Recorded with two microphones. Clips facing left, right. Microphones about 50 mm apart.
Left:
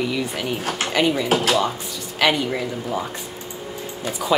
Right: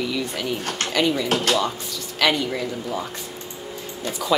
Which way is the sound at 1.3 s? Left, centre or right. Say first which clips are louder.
Left 2 dB; centre.